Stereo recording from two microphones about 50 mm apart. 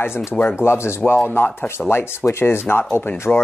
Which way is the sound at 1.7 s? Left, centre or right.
Left.